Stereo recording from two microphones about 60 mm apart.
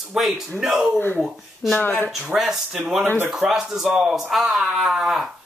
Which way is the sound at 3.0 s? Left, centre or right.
Right.